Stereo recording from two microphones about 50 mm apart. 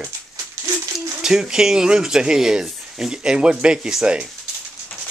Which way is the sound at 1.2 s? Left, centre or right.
Centre.